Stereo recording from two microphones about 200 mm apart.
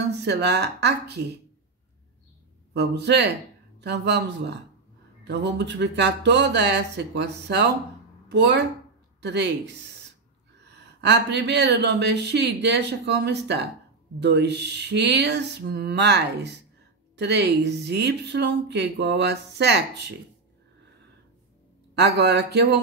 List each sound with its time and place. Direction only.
0.0 s speech: 55° right (ahead or behind)
2.7 s speech: 55° right (ahead or behind)
21.9 s speech: 55° right (ahead or behind)